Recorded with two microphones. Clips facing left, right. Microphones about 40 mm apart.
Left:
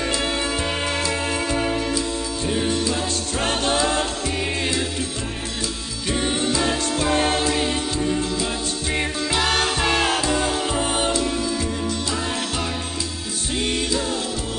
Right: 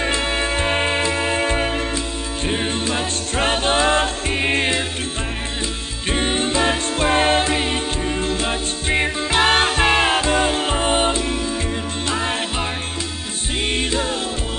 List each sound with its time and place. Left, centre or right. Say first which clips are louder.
0.2 s music: right 3 dB; right
6.0 s music: right 2 dB; right